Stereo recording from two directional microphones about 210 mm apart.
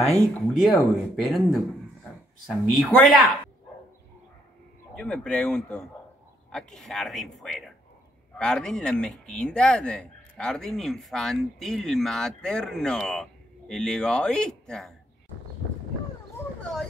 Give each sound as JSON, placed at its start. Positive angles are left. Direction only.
{"t": 0.0, "sound": "speech", "side_deg": 0}
{"t": 2.8, "sound": "speech", "side_deg": 0}
{"t": 4.9, "sound": "speech", "side_deg": 5}